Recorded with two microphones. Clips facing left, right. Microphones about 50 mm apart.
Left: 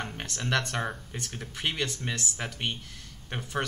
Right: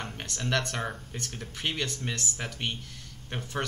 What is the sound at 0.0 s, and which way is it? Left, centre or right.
Speech, centre.